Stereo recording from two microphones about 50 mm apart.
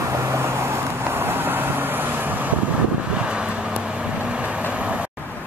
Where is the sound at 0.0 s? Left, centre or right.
Right.